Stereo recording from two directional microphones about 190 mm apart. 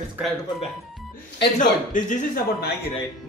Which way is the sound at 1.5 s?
40° left (ahead or behind).